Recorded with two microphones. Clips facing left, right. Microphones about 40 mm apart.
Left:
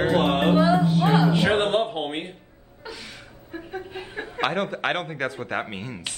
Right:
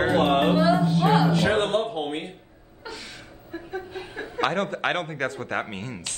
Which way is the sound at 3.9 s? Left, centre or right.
Left.